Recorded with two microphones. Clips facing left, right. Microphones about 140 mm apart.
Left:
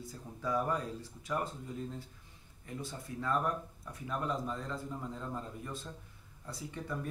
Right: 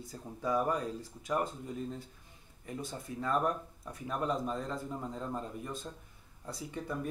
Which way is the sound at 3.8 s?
20° right (ahead or behind).